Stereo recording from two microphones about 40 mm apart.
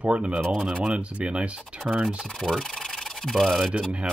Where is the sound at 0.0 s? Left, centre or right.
Right.